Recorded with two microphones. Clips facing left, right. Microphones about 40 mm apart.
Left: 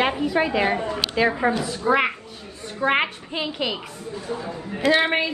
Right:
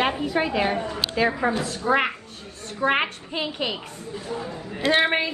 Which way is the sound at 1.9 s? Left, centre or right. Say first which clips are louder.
Left 2 dB; centre.